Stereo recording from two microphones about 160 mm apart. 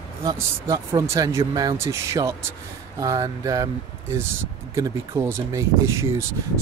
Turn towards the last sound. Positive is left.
turn(degrees=-15)  # may be behind; listen again after turning